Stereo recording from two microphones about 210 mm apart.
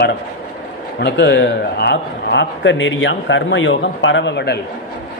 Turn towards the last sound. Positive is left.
turn(degrees=55)  # may be behind; listen again after turning